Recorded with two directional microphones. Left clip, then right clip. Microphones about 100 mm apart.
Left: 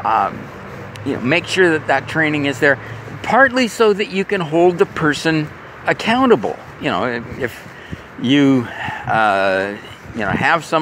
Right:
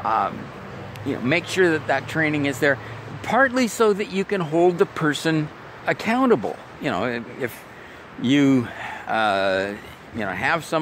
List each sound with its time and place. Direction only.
0.0 s speech: 20° right (ahead or behind)
10.1 s speech: 10° right (ahead or behind)